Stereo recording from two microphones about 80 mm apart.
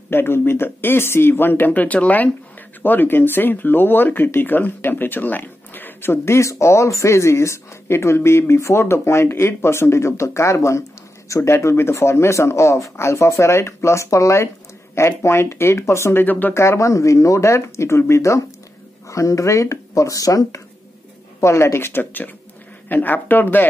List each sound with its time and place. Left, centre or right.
0.1 s speech: left
16.5 s speech: left